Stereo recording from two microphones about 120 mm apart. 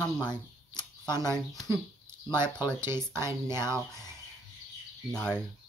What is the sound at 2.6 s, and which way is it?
Speech, 20° right (ahead or behind).